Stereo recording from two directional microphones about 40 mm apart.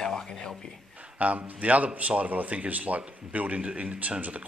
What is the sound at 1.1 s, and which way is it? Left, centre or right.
Speech, right.